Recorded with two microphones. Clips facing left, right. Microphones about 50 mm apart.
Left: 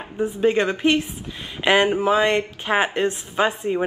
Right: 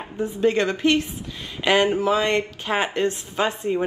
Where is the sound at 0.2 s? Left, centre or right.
Centre.